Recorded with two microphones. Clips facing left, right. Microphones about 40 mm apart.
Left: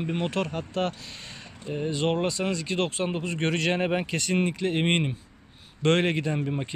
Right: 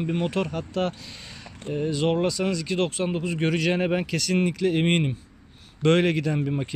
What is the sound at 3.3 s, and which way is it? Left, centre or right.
Speech, centre.